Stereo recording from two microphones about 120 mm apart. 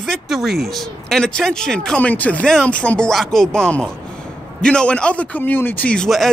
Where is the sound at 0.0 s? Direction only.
Centre (ahead or behind).